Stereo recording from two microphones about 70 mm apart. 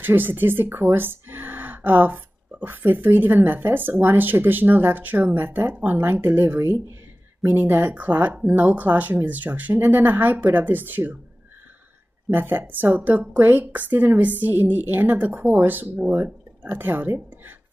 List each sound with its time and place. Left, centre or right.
0.0 s speech: right
12.3 s speech: right